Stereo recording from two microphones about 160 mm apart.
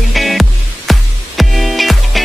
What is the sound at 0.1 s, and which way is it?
Music, centre (ahead or behind).